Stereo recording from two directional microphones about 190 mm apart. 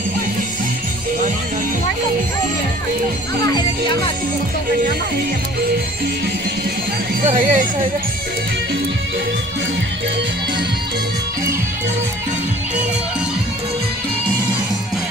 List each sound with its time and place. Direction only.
7.2 s speech: 40° right (ahead or behind)